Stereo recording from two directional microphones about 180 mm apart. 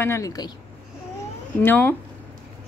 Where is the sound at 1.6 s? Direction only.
10° left (ahead or behind).